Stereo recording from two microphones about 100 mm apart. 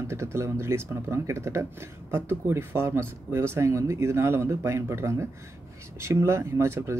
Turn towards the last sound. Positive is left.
turn(degrees=-25)  # may be behind; listen again after turning